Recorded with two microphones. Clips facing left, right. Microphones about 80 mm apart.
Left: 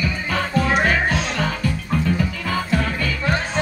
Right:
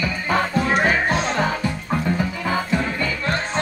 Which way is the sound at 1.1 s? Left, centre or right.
Right.